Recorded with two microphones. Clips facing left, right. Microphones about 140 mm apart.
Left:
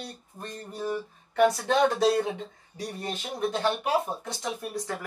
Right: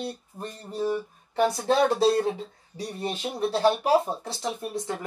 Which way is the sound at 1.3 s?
30° right (ahead or behind).